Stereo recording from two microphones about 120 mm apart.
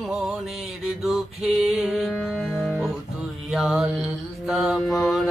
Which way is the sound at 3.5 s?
5° right (ahead or behind).